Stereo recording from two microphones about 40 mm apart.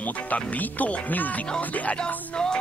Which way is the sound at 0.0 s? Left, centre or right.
Left.